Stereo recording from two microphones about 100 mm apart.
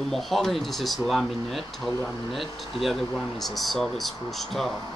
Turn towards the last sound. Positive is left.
turn(degrees=5)  # may be behind; listen again after turning